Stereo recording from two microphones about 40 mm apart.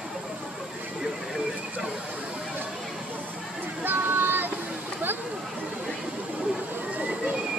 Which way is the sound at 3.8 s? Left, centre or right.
Right.